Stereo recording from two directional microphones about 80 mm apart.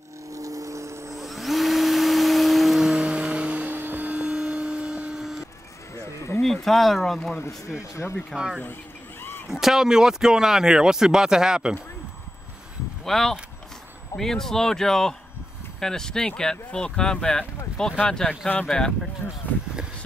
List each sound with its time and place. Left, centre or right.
0.3 s vehicle: right
1.1 s vacuum cleaner: centre
5.9 s a sound: left
6.4 s speech: centre
7.3 s speech: left
9.5 s speech: centre
13.0 s speech: centre